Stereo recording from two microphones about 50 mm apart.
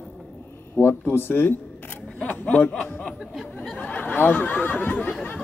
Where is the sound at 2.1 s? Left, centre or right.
Left.